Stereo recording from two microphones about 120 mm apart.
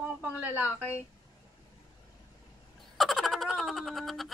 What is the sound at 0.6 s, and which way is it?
Speech, 15° left (ahead or behind).